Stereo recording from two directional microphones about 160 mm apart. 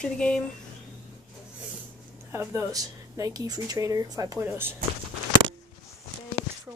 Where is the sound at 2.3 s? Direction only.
20° right (ahead or behind).